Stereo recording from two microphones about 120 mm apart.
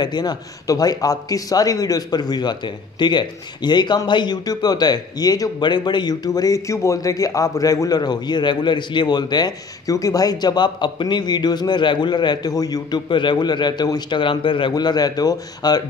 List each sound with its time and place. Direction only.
0.0 s a man's voice: 35° left (ahead or behind)